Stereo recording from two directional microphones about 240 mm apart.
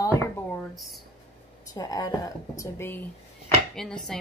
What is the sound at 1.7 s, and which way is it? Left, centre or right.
Speech, centre.